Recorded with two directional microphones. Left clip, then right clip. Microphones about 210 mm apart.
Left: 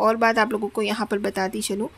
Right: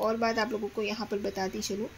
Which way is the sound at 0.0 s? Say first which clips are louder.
Left 9 dB; 35° left (ahead or behind).